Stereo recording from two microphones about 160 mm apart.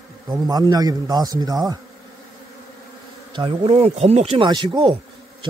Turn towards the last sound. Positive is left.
turn(degrees=-30)  # may be behind; listen again after turning